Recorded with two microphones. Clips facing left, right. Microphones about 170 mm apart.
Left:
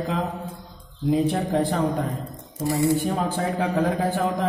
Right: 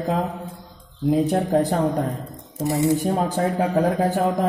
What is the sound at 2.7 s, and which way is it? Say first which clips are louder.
Speech: right 1 dB; 20° right (ahead or behind).